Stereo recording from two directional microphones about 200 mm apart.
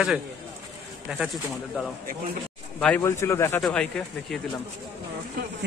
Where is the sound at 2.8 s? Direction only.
5° left (ahead or behind).